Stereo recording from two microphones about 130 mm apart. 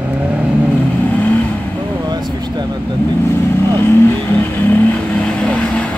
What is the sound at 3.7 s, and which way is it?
Speech, 15° left (ahead or behind).